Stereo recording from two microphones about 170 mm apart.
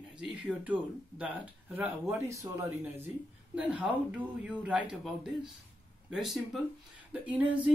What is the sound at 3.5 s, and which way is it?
Speech, 5° right (ahead or behind).